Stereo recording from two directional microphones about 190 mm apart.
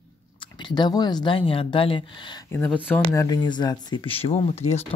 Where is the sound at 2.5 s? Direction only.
10° left (ahead or behind); by 4.8 s 35° left (ahead or behind).